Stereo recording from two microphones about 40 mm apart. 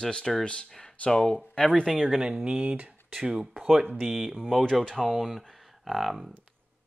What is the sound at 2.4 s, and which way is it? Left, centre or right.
Speech, right.